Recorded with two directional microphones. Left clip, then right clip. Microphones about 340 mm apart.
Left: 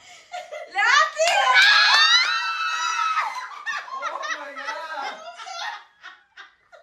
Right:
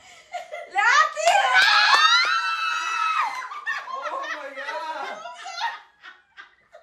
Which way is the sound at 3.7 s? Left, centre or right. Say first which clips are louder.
Even; centre.